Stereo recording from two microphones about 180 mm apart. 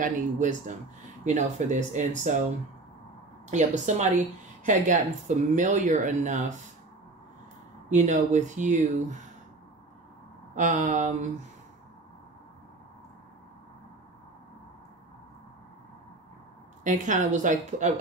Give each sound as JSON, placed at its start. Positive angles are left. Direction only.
{"t": 0.0, "sound": "speech", "side_deg": -45}
{"t": 3.4, "sound": "speech", "side_deg": -40}
{"t": 7.9, "sound": "speech", "side_deg": -40}
{"t": 10.5, "sound": "speech", "side_deg": -45}
{"t": 16.8, "sound": "speech", "side_deg": -45}